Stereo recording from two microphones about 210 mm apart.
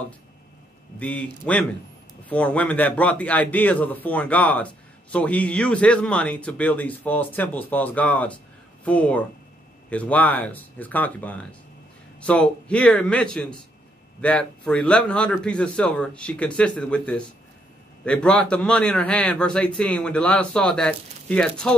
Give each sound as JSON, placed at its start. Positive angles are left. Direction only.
{"t": 0.9, "sound": "a man's voice", "side_deg": 5}